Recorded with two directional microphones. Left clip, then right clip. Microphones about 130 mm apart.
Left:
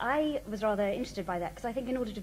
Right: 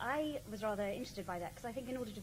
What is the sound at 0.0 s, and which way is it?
A woman's voice, 40° left (ahead or behind).